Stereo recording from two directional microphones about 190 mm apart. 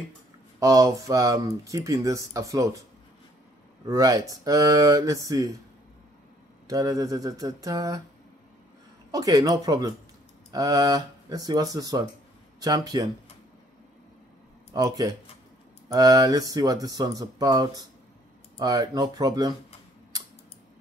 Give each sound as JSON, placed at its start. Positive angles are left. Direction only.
{"t": 0.6, "sound": "speech", "side_deg": -20}
{"t": 3.8, "sound": "speech", "side_deg": -20}
{"t": 6.7, "sound": "speech", "side_deg": -20}
{"t": 9.1, "sound": "speech", "side_deg": -20}
{"t": 14.7, "sound": "speech", "side_deg": -20}